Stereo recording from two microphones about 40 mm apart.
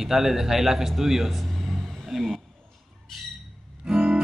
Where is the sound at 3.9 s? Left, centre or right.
Centre.